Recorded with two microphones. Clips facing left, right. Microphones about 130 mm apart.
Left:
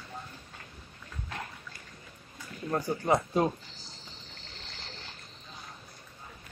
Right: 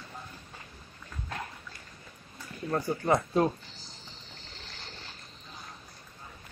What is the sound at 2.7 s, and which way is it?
Speech, 15° left (ahead or behind).